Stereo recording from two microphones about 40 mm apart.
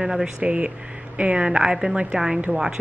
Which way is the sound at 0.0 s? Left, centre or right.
Centre.